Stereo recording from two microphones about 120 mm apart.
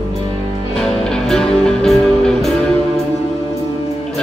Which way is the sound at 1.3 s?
5° left (ahead or behind).